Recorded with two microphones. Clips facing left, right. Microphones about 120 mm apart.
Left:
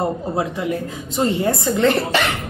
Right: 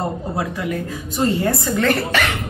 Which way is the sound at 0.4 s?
25° left (ahead or behind).